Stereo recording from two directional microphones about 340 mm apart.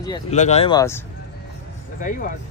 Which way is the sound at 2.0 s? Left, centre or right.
Left.